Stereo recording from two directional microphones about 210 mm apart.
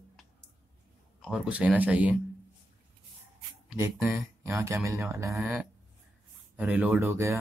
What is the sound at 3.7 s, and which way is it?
Speech, 10° right (ahead or behind).